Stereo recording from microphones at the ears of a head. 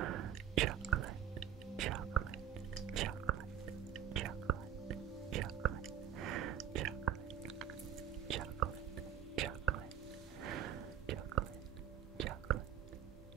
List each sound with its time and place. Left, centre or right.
0.0 s whispering: right
2.9 s chewing: right
3.9 s whispering: right
9.3 s whispering: right